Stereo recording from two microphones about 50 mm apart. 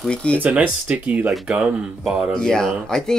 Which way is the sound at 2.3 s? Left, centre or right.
Centre.